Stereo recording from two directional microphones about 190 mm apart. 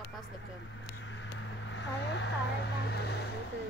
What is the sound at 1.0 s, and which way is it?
Vehicle, 75° left (ahead or behind).